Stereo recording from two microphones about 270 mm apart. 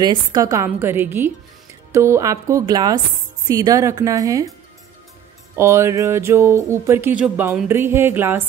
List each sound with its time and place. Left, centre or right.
0.0 s music: centre
5.6 s music: centre